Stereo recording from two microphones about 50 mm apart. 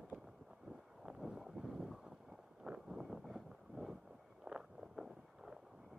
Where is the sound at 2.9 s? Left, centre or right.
Centre.